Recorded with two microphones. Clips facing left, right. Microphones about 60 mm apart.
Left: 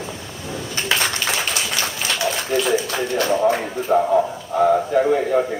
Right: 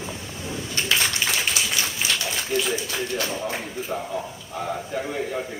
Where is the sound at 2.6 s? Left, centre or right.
Left.